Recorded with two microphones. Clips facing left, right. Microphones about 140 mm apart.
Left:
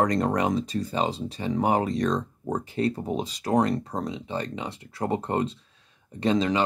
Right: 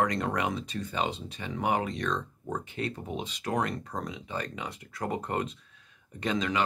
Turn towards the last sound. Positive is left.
turn(degrees=30)  # may be behind; listen again after turning